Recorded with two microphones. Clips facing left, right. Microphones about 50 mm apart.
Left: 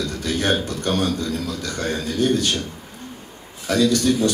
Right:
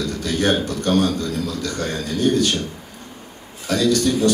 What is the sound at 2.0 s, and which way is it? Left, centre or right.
Speech, right.